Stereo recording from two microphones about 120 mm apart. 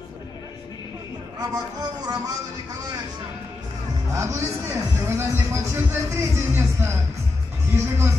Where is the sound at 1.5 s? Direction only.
35° right (ahead or behind).